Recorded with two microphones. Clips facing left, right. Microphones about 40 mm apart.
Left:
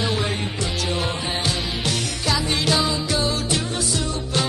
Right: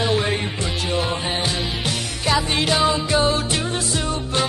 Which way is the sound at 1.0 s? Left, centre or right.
Centre.